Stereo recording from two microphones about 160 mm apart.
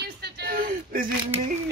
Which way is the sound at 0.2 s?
70° right (ahead or behind).